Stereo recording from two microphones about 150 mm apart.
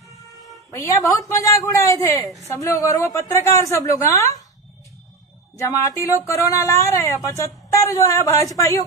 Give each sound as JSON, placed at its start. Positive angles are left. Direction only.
{"t": 0.7, "sound": "speech", "side_deg": 20}
{"t": 5.6, "sound": "speech", "side_deg": 20}